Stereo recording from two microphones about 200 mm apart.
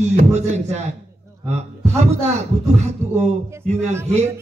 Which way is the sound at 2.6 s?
35° right (ahead or behind).